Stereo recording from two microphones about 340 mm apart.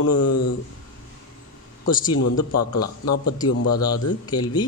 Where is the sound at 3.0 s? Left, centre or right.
Left.